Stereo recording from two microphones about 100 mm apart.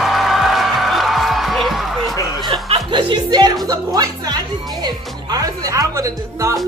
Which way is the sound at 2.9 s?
45° right (ahead or behind).